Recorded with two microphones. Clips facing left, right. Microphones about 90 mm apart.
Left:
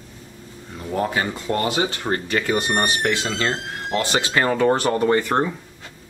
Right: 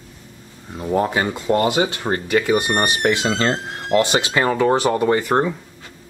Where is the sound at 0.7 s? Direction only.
25° right (ahead or behind).